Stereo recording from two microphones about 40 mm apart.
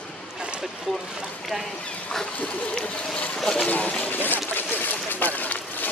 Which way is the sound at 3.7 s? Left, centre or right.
Left.